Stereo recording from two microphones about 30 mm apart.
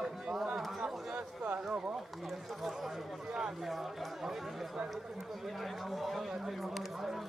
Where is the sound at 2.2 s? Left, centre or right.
Centre.